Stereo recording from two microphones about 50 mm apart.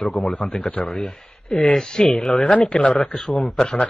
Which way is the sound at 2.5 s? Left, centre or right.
Left.